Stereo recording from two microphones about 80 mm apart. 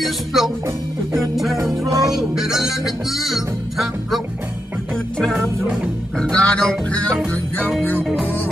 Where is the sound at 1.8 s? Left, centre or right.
Right.